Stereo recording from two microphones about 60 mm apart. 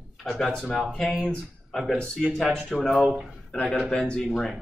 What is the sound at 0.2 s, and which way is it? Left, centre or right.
Speech, centre.